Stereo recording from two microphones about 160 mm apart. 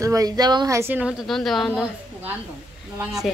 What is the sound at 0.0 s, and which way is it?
A woman's voice, 20° right (ahead or behind).